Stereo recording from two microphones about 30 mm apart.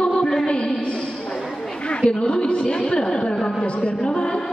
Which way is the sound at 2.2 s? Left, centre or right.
Left.